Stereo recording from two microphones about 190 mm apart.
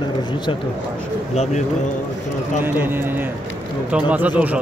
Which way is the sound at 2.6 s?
10° right (ahead or behind).